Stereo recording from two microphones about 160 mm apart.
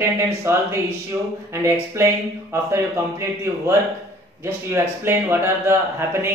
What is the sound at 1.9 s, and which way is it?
Speech, 15° right (ahead or behind).